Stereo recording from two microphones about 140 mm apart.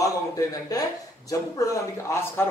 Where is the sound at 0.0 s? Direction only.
25° left (ahead or behind).